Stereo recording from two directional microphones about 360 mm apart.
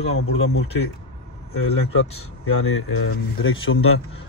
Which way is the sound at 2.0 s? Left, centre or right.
Left.